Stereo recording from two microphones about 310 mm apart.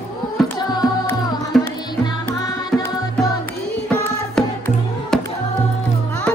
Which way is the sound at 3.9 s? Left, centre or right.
Centre.